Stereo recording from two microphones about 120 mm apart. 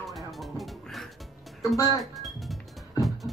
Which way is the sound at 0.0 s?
Centre (ahead or behind).